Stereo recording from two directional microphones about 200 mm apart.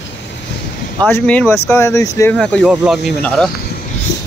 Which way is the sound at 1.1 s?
10° left (ahead or behind).